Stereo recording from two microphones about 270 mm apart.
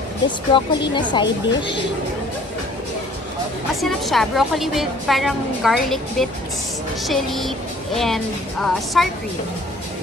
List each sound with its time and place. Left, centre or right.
0.5 s a woman's voice: centre
3.8 s a woman's voice: centre